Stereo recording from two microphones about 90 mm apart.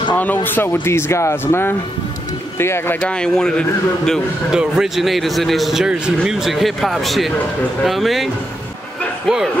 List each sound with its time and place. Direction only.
0.1 s speech: 20° left (ahead or behind)
3.0 s a man's voice: 10° left (ahead or behind)
4.5 s speech: 5° right (ahead or behind)